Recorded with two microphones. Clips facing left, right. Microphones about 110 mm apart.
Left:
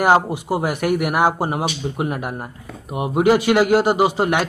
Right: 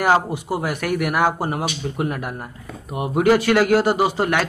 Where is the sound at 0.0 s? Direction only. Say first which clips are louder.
Left 2 dB; 15° left (ahead or behind).